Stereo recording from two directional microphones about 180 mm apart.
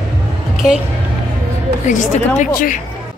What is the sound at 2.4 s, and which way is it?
Speech, 50° left (ahead or behind).